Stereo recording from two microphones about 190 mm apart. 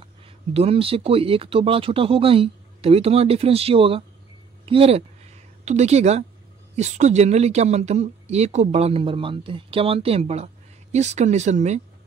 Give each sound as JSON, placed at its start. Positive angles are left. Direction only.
{"t": 0.0, "sound": "speech", "side_deg": -30}